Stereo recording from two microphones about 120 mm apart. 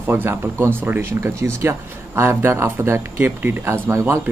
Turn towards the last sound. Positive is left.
turn(degrees=-25)  # may be behind; listen again after turning